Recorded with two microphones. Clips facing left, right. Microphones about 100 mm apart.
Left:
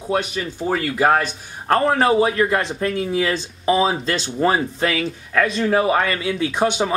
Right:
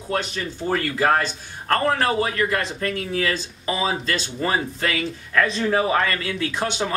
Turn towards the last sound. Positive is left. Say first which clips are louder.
# left 5 dB
turn(degrees=15)  # may be behind; listen again after turning